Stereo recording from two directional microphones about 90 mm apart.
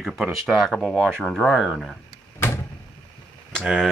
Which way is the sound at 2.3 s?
30° left (ahead or behind).